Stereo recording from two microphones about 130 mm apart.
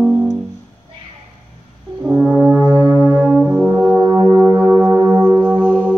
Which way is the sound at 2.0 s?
10° right (ahead or behind).